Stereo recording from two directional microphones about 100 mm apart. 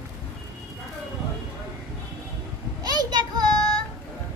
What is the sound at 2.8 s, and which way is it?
Children playing, 40° right (ahead or behind).